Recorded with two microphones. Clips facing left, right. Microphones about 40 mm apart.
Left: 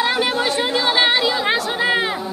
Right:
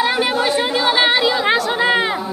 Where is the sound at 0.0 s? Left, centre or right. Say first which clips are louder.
Right 2 dB; centre.